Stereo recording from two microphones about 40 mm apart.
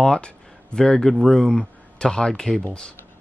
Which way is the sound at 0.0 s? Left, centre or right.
Centre.